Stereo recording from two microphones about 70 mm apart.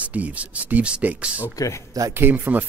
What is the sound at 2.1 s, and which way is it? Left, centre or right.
Speech, right.